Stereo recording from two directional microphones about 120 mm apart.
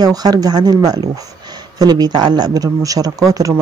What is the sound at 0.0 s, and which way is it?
Speech, 35° right (ahead or behind).